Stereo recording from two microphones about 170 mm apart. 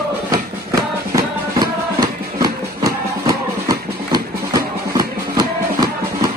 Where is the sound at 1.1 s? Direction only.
25° right (ahead or behind).